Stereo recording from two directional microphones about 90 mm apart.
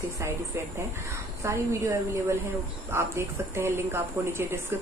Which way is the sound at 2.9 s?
30° right (ahead or behind).